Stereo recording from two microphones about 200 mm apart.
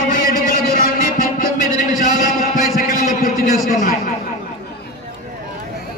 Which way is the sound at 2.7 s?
45° left (ahead or behind).